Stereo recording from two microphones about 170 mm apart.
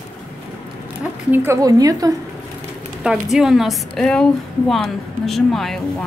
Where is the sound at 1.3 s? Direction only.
15° right (ahead or behind).